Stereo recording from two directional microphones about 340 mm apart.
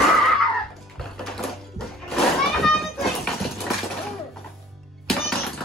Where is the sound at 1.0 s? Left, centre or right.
Centre.